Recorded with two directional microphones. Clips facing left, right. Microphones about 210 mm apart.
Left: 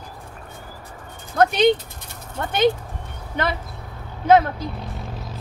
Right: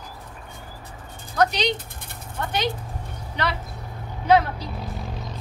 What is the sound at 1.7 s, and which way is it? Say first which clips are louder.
Dog: even; 55° right (ahead or behind).